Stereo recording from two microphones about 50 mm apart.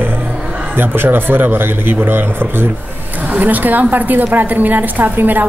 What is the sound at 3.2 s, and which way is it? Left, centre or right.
A woman's voice, right.